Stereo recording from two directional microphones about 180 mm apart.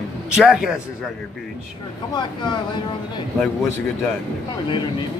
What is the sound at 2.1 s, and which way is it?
Speech, 25° left (ahead or behind).